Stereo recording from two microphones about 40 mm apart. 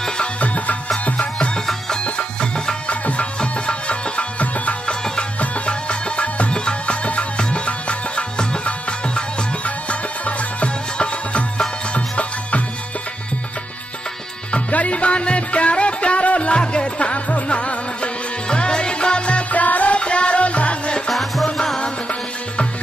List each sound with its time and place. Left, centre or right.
1.0 s music: left
2.9 s music: left
4.8 s music: centre; by 12.6 s left
14.5 s music: left
20.0 s music: left
21.1 s music: centre